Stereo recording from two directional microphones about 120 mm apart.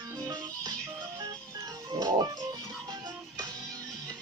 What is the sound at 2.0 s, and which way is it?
Music, 35° right (ahead or behind).